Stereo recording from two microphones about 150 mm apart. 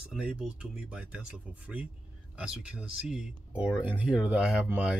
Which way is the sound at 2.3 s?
5° right (ahead or behind).